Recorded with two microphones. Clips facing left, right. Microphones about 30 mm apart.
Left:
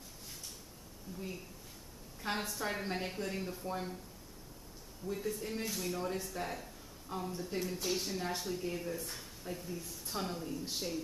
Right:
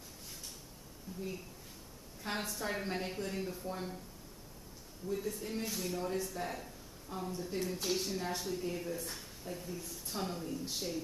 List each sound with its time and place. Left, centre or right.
2.2 s speech: centre
5.0 s speech: centre